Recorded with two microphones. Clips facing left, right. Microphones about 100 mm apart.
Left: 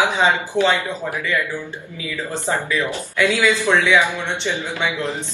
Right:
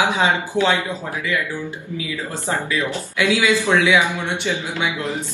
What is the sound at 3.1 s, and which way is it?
Speech, 15° right (ahead or behind).